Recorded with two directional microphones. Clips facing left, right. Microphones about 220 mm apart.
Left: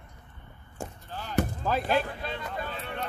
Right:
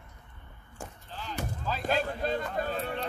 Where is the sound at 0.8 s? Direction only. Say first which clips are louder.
Left 5 dB; 25° left (ahead or behind).